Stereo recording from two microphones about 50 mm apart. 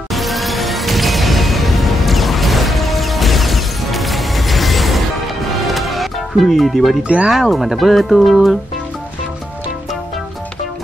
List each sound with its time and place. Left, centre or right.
0.1 s music: centre
7.0 s speech: right
7.2 s speech: centre